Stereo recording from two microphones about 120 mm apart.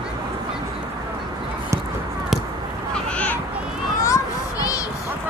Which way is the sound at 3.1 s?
15° left (ahead or behind).